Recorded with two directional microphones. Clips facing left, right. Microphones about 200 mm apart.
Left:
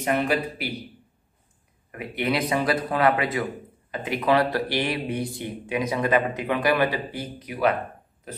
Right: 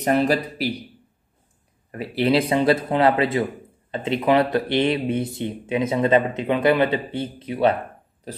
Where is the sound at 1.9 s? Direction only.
30° right (ahead or behind).